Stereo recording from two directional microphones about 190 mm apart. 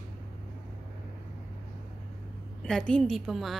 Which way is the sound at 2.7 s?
5° left (ahead or behind).